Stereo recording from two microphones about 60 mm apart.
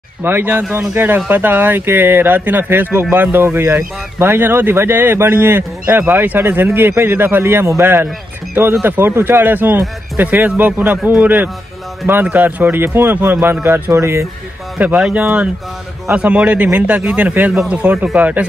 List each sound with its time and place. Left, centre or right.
0.2 s speech: right
13.9 s speech: right
15.0 s speech: centre
15.2 s speech: right